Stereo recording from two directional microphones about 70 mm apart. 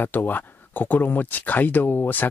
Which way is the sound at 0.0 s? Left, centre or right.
Left.